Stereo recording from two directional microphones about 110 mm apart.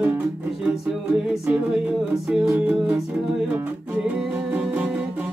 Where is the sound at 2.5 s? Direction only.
10° right (ahead or behind).